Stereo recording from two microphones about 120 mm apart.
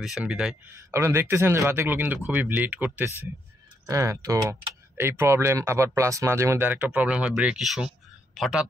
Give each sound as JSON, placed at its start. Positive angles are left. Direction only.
{"t": 0.0, "sound": "speech", "side_deg": -5}
{"t": 0.7, "sound": "speech", "side_deg": -20}